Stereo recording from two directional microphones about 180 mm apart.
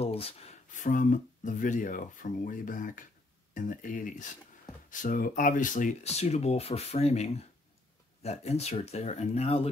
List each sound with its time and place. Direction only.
0.0 s speech: 35° left (ahead or behind)